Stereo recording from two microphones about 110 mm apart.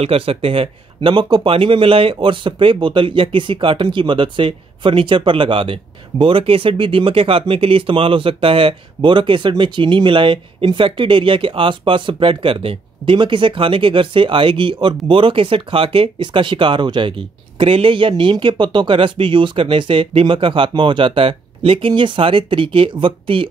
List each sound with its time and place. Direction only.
0.0 s speech: 60° right (ahead or behind)